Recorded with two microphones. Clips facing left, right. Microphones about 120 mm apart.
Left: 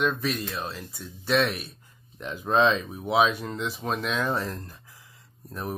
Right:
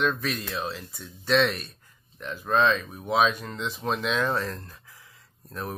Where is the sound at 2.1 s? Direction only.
15° left (ahead or behind).